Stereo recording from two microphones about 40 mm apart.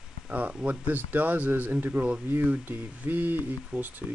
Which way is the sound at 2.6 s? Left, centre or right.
Right.